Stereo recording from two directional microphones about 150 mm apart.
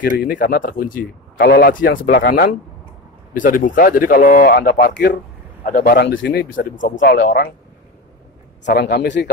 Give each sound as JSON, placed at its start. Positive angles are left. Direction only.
{"t": 0.2, "sound": "speech", "side_deg": 70}
{"t": 3.3, "sound": "speech", "side_deg": 60}
{"t": 5.7, "sound": "speech", "side_deg": 80}
{"t": 8.7, "sound": "speech", "side_deg": 90}